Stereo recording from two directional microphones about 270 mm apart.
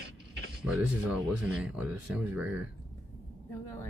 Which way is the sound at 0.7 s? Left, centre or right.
Centre.